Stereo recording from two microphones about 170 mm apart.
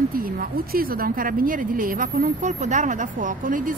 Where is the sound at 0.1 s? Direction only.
60° right (ahead or behind).